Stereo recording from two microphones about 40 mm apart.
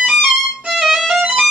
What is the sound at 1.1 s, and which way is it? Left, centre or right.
Music, right.